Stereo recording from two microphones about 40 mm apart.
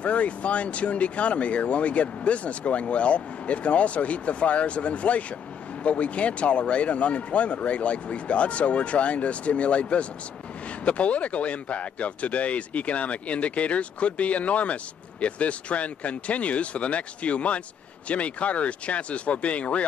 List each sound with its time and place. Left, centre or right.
0.0 s speech: left